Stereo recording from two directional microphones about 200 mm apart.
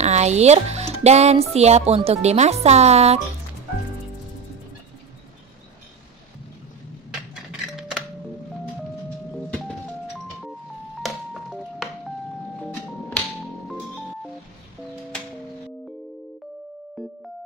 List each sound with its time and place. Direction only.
0.0 s a child's voice: 35° right (ahead or behind)
17.0 s music: centre (ahead or behind)